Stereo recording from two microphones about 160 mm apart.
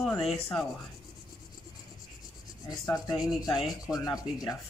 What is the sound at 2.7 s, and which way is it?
Sanding, 20° left (ahead or behind).